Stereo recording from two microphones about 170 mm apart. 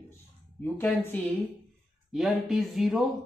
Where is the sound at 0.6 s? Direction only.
10° left (ahead or behind).